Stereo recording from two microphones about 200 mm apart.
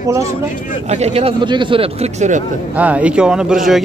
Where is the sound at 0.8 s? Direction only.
35° right (ahead or behind).